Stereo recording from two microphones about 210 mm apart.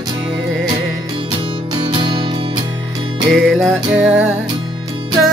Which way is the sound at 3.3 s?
Centre (ahead or behind).